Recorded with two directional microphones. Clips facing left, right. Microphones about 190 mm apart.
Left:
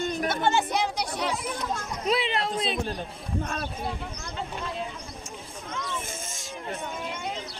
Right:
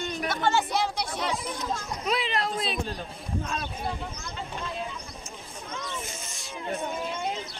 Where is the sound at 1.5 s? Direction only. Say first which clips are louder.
Left 1 dB; 30° left (ahead or behind).